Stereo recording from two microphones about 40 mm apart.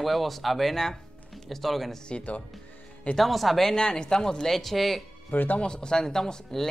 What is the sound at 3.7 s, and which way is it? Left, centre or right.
Speech, centre.